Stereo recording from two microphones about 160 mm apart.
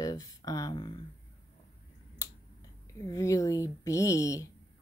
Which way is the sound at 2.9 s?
20° left (ahead or behind).